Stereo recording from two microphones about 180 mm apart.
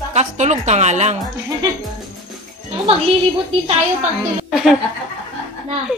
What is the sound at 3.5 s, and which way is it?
Speech, 30° right (ahead or behind).